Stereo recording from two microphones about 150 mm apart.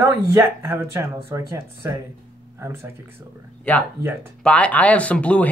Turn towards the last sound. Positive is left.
turn(degrees=10)  # may be behind; listen again after turning